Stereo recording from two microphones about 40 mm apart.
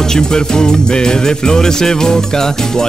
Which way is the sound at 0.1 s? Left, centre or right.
Centre.